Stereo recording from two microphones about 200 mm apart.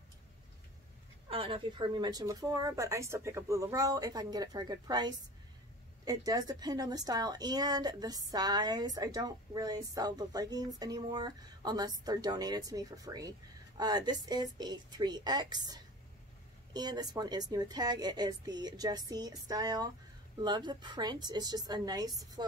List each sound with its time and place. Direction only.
1.3 s a woman's voice: 25° right (ahead or behind)